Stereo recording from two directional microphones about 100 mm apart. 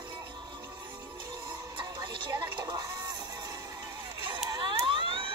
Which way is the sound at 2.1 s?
55° right (ahead or behind).